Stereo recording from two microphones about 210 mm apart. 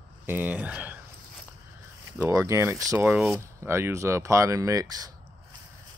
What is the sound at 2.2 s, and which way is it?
Speech, 15° right (ahead or behind).